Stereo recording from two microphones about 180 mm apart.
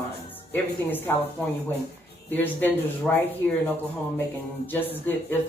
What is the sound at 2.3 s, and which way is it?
Speech, 10° left (ahead or behind).